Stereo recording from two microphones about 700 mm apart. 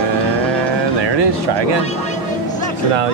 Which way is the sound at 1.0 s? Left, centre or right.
Right.